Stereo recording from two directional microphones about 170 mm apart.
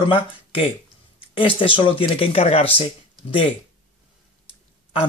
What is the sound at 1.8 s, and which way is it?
Speech, 30° left (ahead or behind).